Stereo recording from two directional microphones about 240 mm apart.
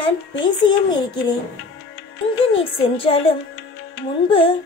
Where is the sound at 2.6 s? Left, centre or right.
Left.